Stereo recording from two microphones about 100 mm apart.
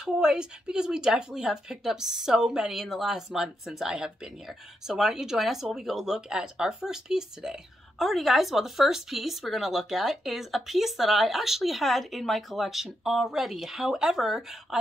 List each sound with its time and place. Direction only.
0.0 s speech: 5° right (ahead or behind)